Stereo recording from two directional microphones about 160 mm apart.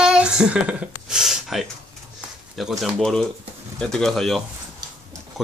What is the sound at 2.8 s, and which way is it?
Speech, centre (ahead or behind).